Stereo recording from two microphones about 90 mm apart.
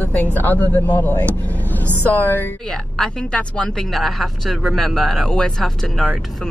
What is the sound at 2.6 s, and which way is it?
Speech, 5° left (ahead or behind).